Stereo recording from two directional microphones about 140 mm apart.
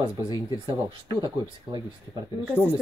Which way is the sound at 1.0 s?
35° right (ahead or behind).